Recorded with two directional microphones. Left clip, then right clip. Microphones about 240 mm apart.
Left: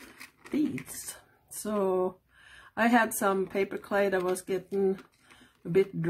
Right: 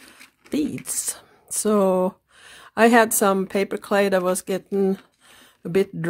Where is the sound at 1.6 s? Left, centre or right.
Right.